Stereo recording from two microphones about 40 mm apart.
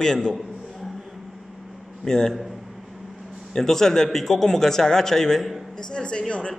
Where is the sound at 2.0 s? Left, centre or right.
Centre.